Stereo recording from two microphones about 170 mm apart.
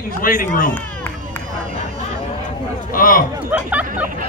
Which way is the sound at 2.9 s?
55° left (ahead or behind).